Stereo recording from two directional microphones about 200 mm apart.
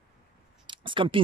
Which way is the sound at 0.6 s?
25° right (ahead or behind).